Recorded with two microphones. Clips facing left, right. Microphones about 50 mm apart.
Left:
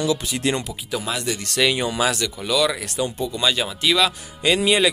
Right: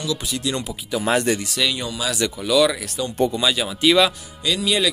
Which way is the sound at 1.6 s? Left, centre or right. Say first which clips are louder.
Left 5 dB; left.